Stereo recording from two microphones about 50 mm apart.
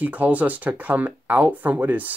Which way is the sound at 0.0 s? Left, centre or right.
Right.